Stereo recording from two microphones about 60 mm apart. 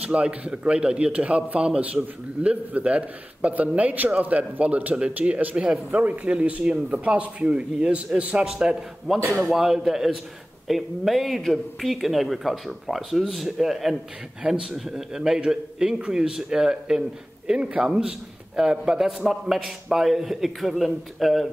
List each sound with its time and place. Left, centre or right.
0.0 s a man's voice: right
9.3 s a man's voice: centre